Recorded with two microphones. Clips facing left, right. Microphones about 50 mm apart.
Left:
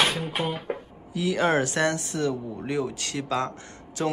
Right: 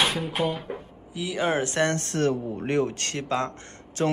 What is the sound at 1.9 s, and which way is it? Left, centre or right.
Speech, right.